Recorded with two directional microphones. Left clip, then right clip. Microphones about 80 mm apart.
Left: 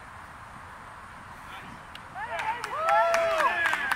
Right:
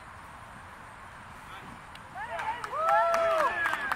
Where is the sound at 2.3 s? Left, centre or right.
Left.